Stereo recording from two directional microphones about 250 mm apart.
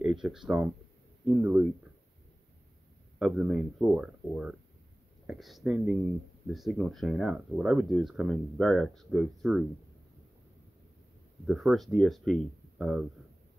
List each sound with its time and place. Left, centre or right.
0.0 s speech: centre
3.2 s speech: centre
11.4 s speech: centre